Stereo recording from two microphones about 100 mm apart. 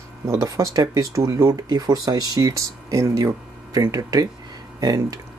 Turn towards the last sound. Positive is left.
turn(degrees=-40)  # may be behind; listen again after turning